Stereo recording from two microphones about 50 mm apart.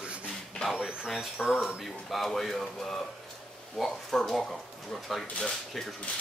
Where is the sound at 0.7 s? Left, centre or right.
Centre.